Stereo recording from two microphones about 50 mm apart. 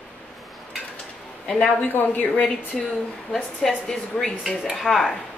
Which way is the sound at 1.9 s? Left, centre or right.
Left.